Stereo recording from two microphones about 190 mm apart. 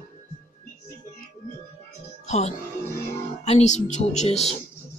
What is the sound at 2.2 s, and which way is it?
Music, 35° left (ahead or behind).